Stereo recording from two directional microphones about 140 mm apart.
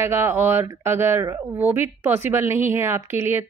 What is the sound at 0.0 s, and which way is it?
A woman's voice, 15° right (ahead or behind).